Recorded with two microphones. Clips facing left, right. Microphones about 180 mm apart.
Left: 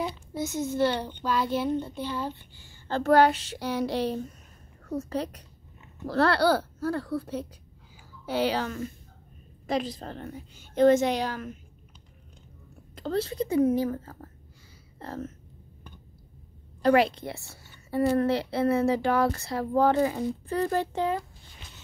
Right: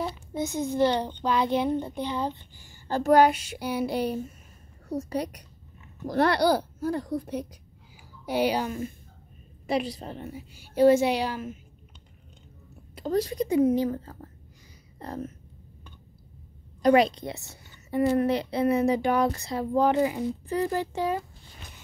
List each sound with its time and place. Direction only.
0.1 s a child's voice: 15° right (ahead or behind)
12.9 s a woman's voice: 15° right (ahead or behind)
15.0 s speech: 15° right (ahead or behind)
16.8 s a woman's voice: 15° right (ahead or behind)